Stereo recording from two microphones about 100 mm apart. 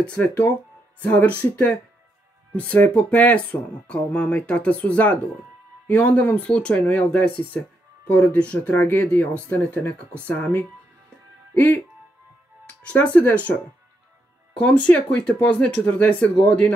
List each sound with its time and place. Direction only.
0.0 s speech: 15° left (ahead or behind)
12.8 s speech: 15° left (ahead or behind)
14.5 s speech: 10° left (ahead or behind)